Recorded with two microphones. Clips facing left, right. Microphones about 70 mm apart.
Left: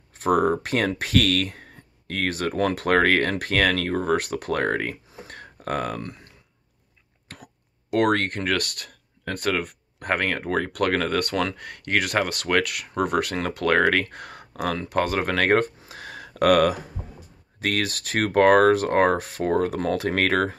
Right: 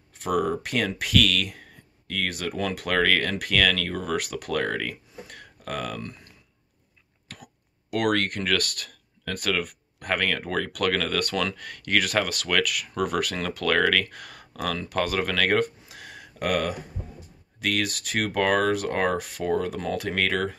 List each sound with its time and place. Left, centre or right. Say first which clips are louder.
0.2 s speech: left 5 dB; left
7.9 s speech: left 3 dB; left
17.6 s speech: left 1 dB; left